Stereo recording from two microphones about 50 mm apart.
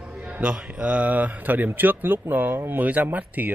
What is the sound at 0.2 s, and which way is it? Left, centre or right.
Speech, right.